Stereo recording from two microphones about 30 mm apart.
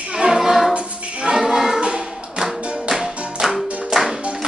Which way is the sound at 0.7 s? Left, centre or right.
Right.